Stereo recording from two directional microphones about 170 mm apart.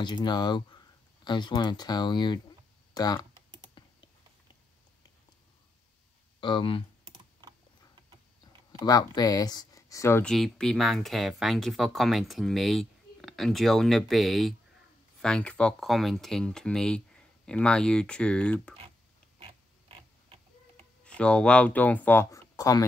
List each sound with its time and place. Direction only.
0.0 s speech: 25° left (ahead or behind)
3.8 s typing: 30° left (ahead or behind)
6.4 s speech: 30° left (ahead or behind)
8.7 s speech: 20° left (ahead or behind)
10.2 s speech: 5° left (ahead or behind)
19.4 s creak: 35° right (ahead or behind)
21.0 s speech: 5° left (ahead or behind)